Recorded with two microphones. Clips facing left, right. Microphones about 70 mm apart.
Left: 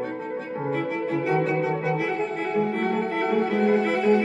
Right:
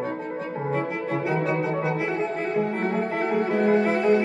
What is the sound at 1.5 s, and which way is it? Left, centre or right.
Cello, right.